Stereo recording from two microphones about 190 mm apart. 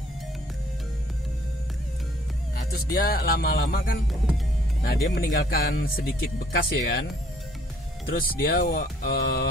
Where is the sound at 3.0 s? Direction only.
50° left (ahead or behind).